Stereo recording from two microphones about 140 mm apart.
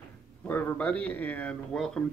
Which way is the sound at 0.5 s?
10° left (ahead or behind).